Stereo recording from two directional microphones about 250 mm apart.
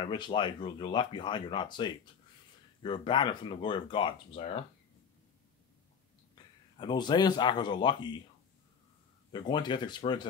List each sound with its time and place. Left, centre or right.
0.0 s speech: centre
6.3 s speech: centre
9.3 s speech: centre